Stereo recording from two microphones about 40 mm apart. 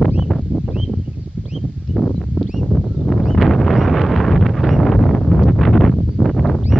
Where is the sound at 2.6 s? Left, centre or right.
Centre.